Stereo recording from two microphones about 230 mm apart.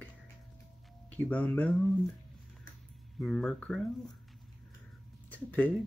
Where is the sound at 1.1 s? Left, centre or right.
Centre.